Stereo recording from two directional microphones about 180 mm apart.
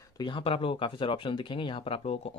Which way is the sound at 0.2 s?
30° left (ahead or behind).